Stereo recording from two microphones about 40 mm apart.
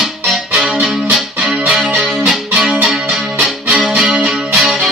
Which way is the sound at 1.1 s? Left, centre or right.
Centre.